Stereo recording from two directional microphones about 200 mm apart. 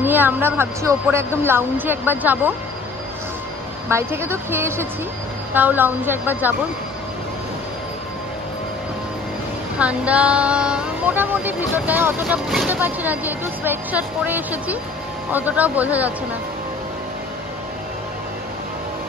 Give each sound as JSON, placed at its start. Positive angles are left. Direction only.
{"t": 0.0, "sound": "child singing", "side_deg": -10}
{"t": 3.9, "sound": "child singing", "side_deg": -10}
{"t": 9.8, "sound": "child singing", "side_deg": -5}